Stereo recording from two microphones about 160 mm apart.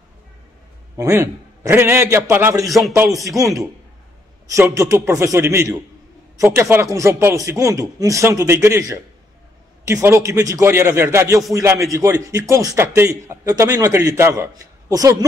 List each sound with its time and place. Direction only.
0.9 s a man's voice: 20° right (ahead or behind)
2.6 s speech: centre (ahead or behind)
4.5 s a man's voice: 20° right (ahead or behind)